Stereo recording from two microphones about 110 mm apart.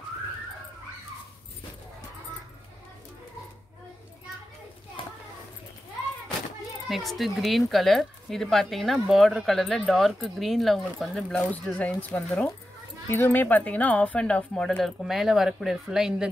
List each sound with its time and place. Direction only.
5.0 s children playing: 50° left (ahead or behind)
6.9 s speech: centre (ahead or behind)